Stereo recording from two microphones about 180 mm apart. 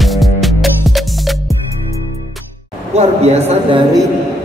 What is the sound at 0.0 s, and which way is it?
Music, centre (ahead or behind).